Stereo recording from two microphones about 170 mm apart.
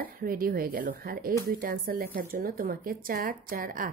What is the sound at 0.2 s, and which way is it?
Speech, 55° right (ahead or behind).